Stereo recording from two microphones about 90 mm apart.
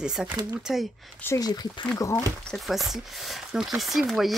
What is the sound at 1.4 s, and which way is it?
Speech, 50° left (ahead or behind).